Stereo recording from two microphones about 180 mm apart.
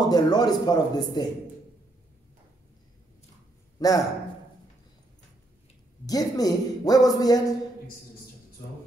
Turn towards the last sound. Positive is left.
turn(degrees=20)  # may be behind; listen again after turning